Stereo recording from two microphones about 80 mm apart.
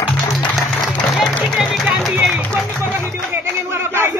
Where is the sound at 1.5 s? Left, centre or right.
Centre.